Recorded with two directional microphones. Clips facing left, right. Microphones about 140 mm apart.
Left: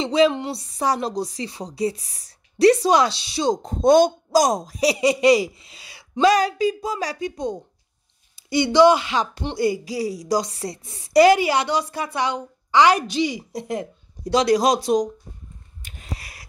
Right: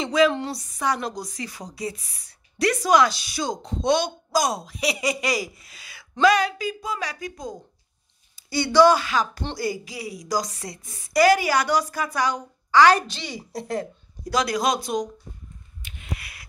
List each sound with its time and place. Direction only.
0.0 s a woman's voice: 30° left (ahead or behind)
3.6 s a woman's voice: 50° left (ahead or behind); by 13.8 s 20° left (ahead or behind)
14.2 s a woman's voice: 30° left (ahead or behind)
15.8 s a sound: 40° left (ahead or behind)